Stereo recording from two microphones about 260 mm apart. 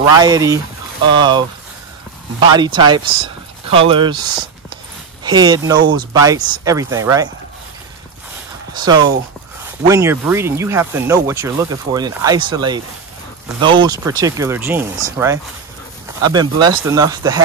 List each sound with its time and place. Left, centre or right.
0.2 s speech: centre
2.5 s speech: centre
8.7 s speech: centre